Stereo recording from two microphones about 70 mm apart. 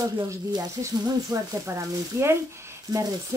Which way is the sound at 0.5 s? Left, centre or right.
Right.